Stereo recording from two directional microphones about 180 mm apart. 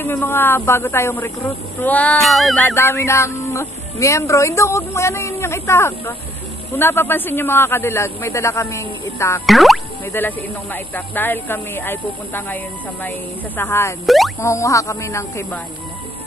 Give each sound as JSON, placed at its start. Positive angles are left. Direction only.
{"t": 0.0, "sound": "speech", "side_deg": 10}
{"t": 9.5, "sound": "speech", "side_deg": 0}
{"t": 10.1, "sound": "speech", "side_deg": 10}
{"t": 13.6, "sound": "speech", "side_deg": 15}
{"t": 14.0, "sound": "speech", "side_deg": 0}
{"t": 14.4, "sound": "speech", "side_deg": 15}